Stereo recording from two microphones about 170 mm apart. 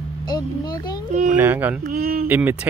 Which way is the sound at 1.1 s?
45° right (ahead or behind).